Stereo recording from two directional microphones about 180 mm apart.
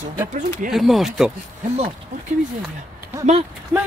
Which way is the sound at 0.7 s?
Centre (ahead or behind).